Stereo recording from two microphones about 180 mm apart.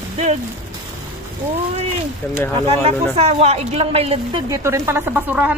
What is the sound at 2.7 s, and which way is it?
Speech, 35° right (ahead or behind).